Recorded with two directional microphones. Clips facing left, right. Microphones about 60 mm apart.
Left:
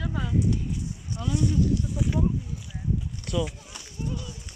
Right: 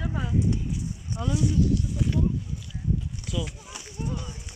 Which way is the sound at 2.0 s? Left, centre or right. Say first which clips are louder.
Even; centre.